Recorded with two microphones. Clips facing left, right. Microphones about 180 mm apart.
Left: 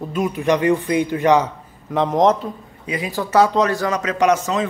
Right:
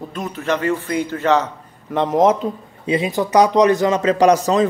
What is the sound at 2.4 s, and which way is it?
A man's voice, 25° right (ahead or behind).